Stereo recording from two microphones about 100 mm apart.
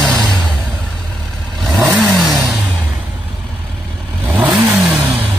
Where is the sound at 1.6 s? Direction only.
Centre (ahead or behind).